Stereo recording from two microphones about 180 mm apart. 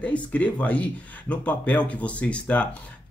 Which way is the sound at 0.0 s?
10° left (ahead or behind).